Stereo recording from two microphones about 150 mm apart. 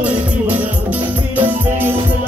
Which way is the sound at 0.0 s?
10° right (ahead or behind).